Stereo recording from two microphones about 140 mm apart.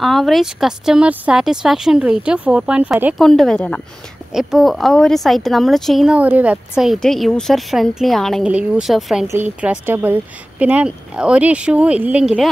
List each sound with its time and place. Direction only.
0.0 s a woman's voice: centre (ahead or behind)
3.2 s a woman's voice: 5° left (ahead or behind)